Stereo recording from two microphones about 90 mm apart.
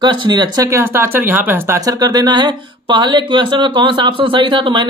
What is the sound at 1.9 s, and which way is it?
Speech, 45° right (ahead or behind).